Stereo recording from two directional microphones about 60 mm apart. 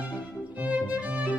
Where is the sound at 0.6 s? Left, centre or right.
Right.